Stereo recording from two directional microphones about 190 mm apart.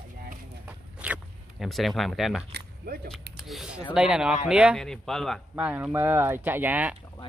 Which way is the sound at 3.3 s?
Centre (ahead or behind).